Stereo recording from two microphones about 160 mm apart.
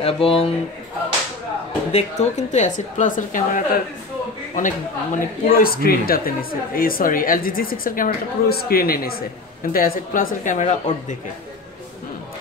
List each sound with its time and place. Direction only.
0.0 s speech: 35° left (ahead or behind)
1.9 s a woman's voice: 45° left (ahead or behind)